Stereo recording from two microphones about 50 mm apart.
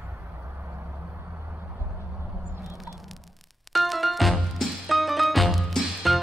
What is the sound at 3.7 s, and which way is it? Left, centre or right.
Music, centre.